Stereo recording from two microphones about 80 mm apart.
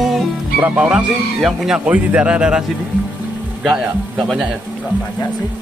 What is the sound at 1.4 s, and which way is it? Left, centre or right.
Speech, centre.